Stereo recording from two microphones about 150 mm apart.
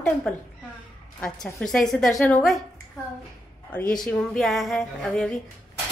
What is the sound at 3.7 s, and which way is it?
A woman's voice, 5° left (ahead or behind).